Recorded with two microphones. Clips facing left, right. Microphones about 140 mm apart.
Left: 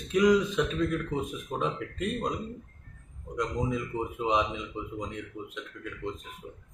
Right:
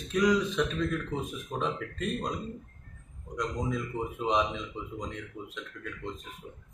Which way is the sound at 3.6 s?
10° left (ahead or behind).